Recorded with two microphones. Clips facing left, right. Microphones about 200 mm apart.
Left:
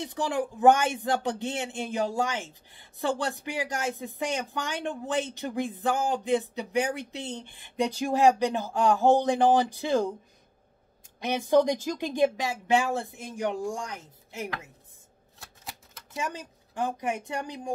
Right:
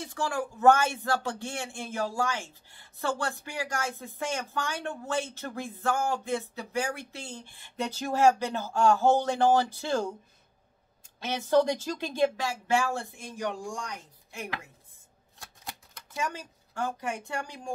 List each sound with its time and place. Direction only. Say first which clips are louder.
0.0 s speech: left 3 dB; 20° left (ahead or behind)
11.1 s a woman's voice: left 2 dB; 15° left (ahead or behind)
15.3 s shuffling cards: even; centre (ahead or behind)
16.2 s a woman's voice: even; 20° left (ahead or behind)